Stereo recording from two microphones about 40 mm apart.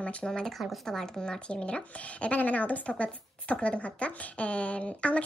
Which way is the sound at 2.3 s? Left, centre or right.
Left.